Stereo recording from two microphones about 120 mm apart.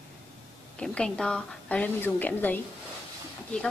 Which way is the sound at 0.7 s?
5° left (ahead or behind).